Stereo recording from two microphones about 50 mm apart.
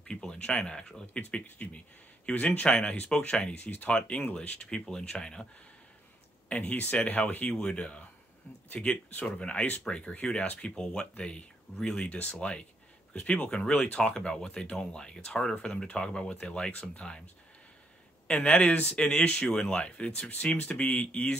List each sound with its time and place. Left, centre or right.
0.3 s speech: centre
1.4 s speech: left; by 5.5 s centre
6.5 s speech: left
8.8 s speech: left
9.4 s speech: left
10.7 s speech: centre
18.2 s speech: left
18.6 s speech: left
18.9 s speech: centre